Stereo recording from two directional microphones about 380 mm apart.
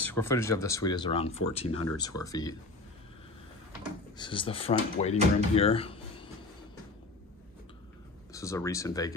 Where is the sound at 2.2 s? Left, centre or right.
Centre.